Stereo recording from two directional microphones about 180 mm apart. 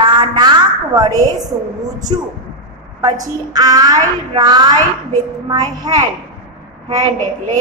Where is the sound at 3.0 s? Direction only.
20° right (ahead or behind).